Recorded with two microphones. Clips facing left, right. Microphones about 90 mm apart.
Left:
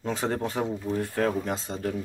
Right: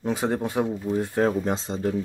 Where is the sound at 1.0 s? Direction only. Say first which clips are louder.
Right 4 dB; 25° right (ahead or behind).